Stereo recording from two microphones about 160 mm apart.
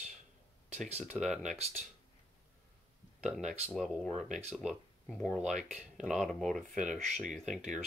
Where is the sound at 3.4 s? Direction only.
45° right (ahead or behind).